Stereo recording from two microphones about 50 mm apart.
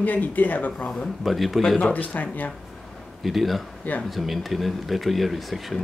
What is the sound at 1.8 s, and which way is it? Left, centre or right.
Speech, left.